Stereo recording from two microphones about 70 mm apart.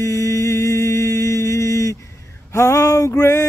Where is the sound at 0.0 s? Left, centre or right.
Left.